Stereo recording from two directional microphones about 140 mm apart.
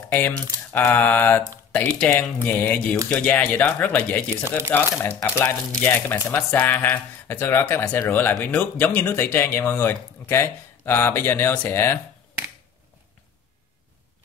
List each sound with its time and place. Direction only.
0.7 s speech: 15° left (ahead or behind)